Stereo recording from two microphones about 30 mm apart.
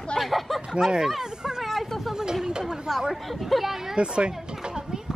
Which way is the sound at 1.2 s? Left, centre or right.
Right.